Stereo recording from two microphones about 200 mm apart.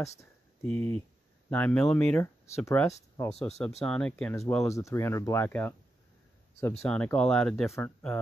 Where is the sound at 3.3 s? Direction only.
35° left (ahead or behind).